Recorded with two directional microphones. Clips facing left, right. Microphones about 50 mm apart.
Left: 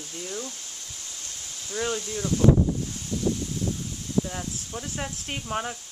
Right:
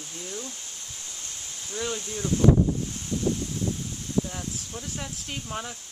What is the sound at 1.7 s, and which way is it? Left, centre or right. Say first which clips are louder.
Speech: left 3 dB; left.